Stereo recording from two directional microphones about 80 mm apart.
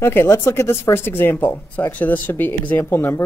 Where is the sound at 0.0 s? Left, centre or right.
Left.